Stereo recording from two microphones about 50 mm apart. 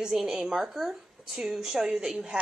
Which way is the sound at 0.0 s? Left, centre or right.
Centre.